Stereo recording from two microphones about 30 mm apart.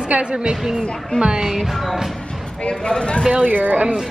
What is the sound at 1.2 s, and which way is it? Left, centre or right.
Speech, right.